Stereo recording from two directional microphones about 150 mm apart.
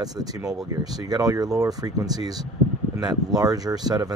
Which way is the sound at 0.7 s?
25° right (ahead or behind).